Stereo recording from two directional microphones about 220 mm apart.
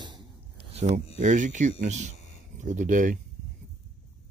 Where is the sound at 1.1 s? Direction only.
35° right (ahead or behind).